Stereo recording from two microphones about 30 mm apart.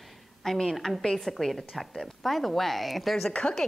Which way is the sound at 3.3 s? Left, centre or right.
Left.